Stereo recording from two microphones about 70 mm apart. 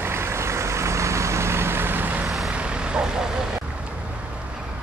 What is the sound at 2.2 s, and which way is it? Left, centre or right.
Vehicle, centre.